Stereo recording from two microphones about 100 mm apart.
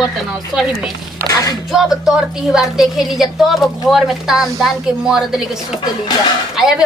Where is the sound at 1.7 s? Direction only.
5° right (ahead or behind).